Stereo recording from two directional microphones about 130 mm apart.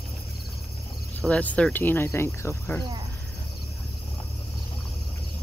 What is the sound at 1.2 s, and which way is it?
Speech, 10° left (ahead or behind).